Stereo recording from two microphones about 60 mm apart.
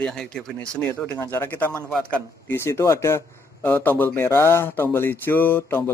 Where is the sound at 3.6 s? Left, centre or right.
Left.